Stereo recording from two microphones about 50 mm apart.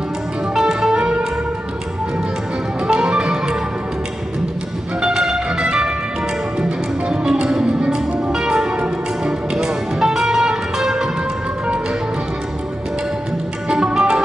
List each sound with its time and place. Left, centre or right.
0.6 s music: centre
2.9 s music: centre
5.0 s music: centre
13.7 s music: centre